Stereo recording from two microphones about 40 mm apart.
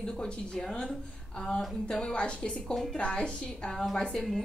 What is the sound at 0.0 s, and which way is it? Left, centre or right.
Speech, centre.